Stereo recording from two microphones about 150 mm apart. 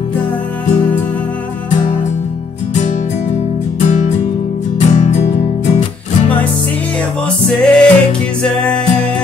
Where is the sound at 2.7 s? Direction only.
50° left (ahead or behind).